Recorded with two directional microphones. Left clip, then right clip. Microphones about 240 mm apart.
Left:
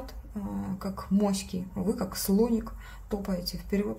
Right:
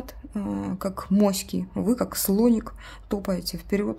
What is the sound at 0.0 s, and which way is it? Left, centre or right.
A woman's voice, right.